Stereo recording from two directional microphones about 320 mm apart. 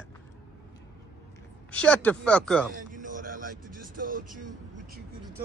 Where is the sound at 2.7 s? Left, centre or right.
Right.